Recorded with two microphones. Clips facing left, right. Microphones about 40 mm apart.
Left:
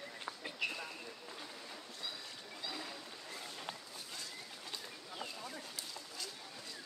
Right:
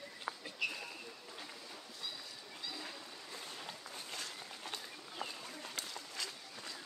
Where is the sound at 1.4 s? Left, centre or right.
Centre.